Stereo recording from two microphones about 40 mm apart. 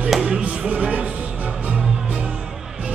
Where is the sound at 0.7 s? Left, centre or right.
Right.